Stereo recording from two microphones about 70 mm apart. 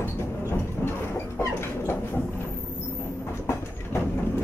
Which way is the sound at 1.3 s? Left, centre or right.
Left.